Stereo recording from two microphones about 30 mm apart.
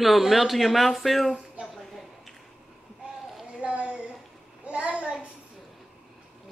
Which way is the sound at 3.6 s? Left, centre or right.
Right.